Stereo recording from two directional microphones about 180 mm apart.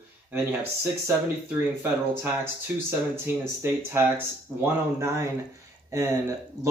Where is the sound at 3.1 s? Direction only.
15° right (ahead or behind).